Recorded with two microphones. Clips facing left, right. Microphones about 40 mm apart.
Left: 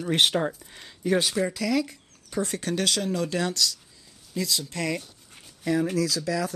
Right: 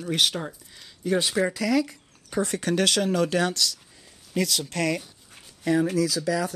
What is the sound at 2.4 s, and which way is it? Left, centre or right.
Speech, right.